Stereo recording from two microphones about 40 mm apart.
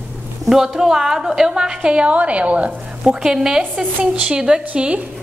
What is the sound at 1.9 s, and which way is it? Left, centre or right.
Speech, right.